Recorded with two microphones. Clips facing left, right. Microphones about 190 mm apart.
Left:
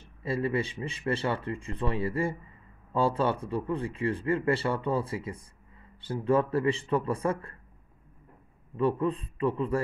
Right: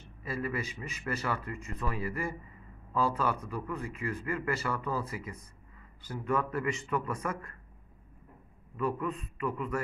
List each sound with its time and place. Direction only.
0.2 s a man's voice: 30° left (ahead or behind)
8.7 s a man's voice: 30° left (ahead or behind)